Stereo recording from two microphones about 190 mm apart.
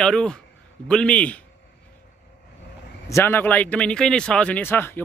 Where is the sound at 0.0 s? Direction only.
5° left (ahead or behind).